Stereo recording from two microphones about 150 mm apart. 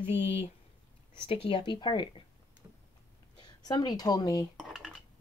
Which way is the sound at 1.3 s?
35° left (ahead or behind).